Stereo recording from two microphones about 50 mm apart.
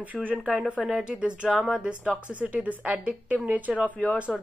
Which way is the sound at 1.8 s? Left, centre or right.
Centre.